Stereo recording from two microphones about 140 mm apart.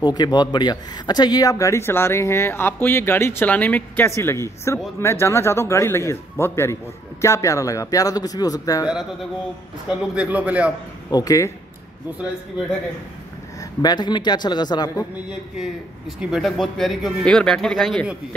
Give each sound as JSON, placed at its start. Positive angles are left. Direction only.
{"t": 0.0, "sound": "speech", "side_deg": 30}
{"t": 9.8, "sound": "a man's voice", "side_deg": -10}
{"t": 11.1, "sound": "speech", "side_deg": 25}
{"t": 13.8, "sound": "speech", "side_deg": 30}
{"t": 16.2, "sound": "a man's voice", "side_deg": -5}